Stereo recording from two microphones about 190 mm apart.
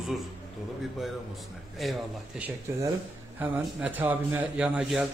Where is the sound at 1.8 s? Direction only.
5° right (ahead or behind).